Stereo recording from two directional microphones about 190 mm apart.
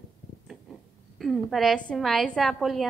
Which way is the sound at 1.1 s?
Centre (ahead or behind).